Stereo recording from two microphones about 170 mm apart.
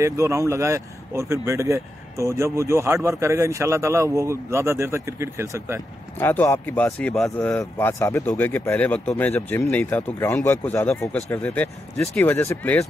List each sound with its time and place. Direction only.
0.0 s speech: 15° right (ahead or behind)
6.1 s speech: 10° left (ahead or behind)